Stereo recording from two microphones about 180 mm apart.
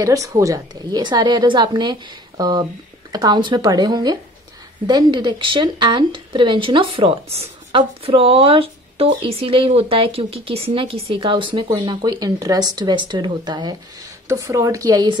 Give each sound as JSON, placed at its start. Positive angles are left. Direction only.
{"t": 0.0, "sound": "a woman's voice", "side_deg": -20}